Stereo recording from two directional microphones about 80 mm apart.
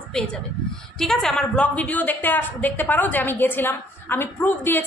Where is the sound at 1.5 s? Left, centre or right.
Centre.